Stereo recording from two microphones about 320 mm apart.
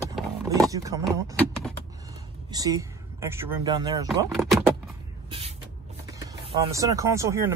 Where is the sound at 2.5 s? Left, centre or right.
Centre.